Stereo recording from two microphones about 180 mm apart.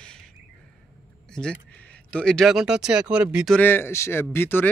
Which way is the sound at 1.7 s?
10° left (ahead or behind).